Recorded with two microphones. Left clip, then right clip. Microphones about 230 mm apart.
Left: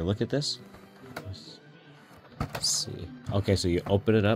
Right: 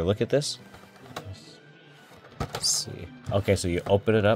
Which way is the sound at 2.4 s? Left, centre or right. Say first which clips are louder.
Right 2 dB; right.